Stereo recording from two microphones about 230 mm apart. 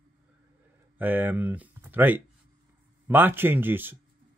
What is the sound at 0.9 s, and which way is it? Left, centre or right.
Speech, centre.